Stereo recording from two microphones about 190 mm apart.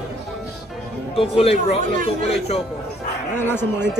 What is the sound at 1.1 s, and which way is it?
Speech, 30° left (ahead or behind).